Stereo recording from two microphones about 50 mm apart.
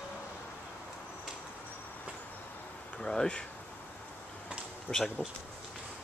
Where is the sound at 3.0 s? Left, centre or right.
Centre.